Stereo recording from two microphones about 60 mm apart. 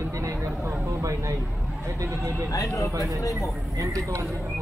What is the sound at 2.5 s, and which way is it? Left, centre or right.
Speech, left.